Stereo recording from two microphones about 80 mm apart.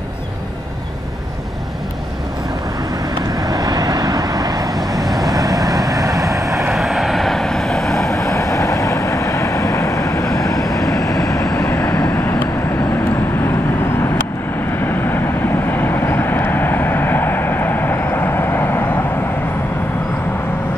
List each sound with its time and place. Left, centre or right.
3.3 s vehicle: right
6.7 s vehicle: centre
8.1 s vehicle: left
14.8 s vehicle: left